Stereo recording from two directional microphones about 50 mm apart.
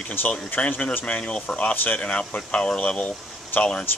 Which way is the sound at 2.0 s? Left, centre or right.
Centre.